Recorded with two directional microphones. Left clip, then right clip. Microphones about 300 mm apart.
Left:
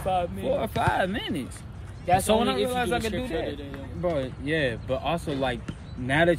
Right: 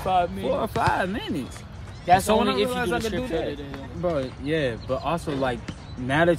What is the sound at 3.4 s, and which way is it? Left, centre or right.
Speech, centre.